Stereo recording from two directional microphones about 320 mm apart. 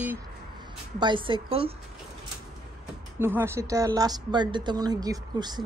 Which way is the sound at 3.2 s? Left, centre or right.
Centre.